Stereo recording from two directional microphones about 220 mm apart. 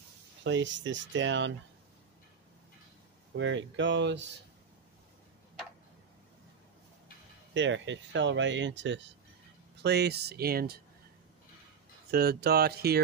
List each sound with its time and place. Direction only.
0.4 s speech: 55° right (ahead or behind)
3.3 s speech: 60° right (ahead or behind)
7.5 s speech: 55° right (ahead or behind)
12.1 s speech: 45° right (ahead or behind)